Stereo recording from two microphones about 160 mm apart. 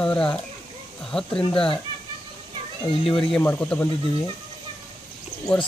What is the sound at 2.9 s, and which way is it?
Speech, 35° left (ahead or behind).